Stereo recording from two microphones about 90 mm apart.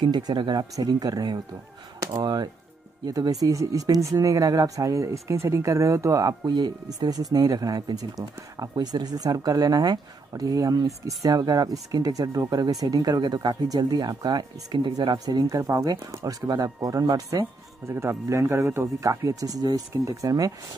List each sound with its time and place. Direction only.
0.0 s speech: 60° right (ahead or behind)
15.1 s speech: 45° right (ahead or behind)